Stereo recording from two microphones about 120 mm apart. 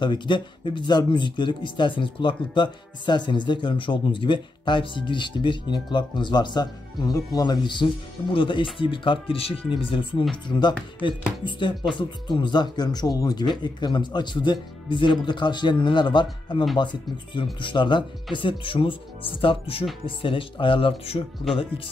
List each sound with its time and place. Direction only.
0.0 s speech: 40° left (ahead or behind)